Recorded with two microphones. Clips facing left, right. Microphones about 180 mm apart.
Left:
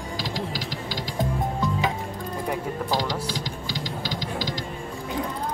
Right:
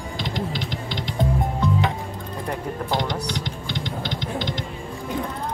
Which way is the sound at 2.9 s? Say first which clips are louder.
Right 2 dB; 20° right (ahead or behind).